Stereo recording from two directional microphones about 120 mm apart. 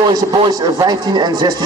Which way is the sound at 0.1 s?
30° right (ahead or behind).